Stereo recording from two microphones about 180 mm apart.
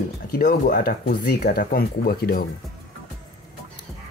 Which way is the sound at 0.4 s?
50° left (ahead or behind).